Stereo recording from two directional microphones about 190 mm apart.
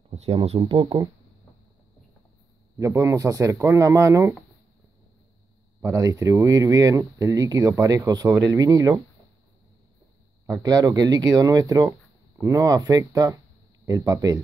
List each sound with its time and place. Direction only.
0.1 s speech: 30° right (ahead or behind)
2.8 s speech: 15° right (ahead or behind)
5.8 s speech: 15° right (ahead or behind)
10.4 s speech: 20° right (ahead or behind)